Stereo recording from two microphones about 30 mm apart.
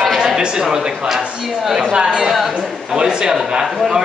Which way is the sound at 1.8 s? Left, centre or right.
Right.